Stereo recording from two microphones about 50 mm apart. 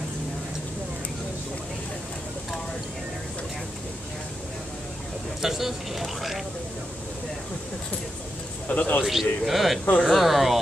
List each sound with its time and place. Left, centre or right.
5.4 s speech: centre
8.6 s speech: left
9.0 s speech: centre